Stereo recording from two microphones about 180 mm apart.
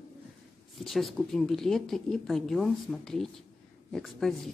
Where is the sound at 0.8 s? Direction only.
Centre (ahead or behind).